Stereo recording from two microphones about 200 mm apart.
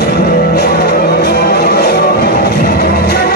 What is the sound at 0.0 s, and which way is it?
Music, 50° left (ahead or behind).